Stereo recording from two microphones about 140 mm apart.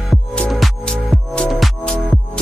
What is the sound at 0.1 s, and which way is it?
Music, 5° left (ahead or behind).